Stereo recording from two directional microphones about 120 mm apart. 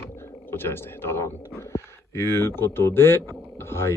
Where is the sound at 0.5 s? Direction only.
20° left (ahead or behind).